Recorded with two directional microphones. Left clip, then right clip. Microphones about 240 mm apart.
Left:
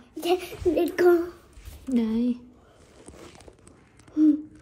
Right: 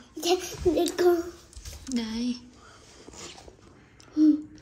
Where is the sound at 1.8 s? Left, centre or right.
Centre.